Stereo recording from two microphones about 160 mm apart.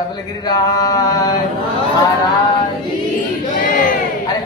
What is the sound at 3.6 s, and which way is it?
Crowd, 60° left (ahead or behind).